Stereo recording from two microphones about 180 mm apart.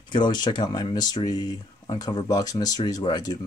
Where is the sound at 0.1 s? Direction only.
25° left (ahead or behind).